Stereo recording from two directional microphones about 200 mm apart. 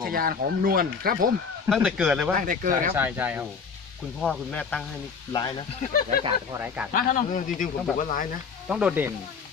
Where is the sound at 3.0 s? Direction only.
10° right (ahead or behind).